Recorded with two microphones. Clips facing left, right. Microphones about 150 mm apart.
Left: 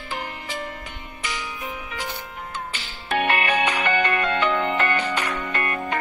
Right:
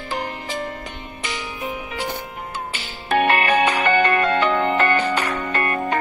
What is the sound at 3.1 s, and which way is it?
Music, 40° right (ahead or behind).